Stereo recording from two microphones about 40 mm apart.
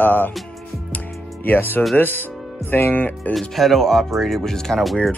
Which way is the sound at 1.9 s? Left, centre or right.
Left.